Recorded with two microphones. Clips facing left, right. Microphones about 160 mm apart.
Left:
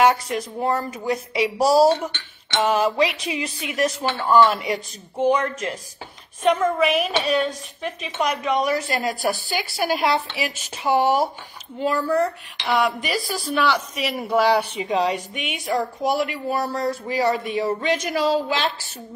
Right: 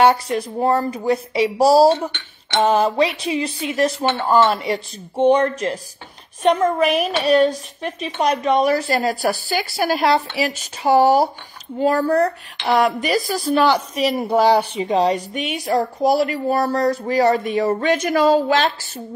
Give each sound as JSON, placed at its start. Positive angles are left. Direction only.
{"t": 0.0, "sound": "speech", "side_deg": -30}